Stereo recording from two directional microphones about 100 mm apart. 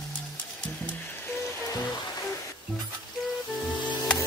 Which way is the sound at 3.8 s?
10° left (ahead or behind).